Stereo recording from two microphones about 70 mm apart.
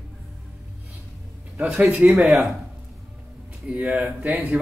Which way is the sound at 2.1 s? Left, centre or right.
Centre.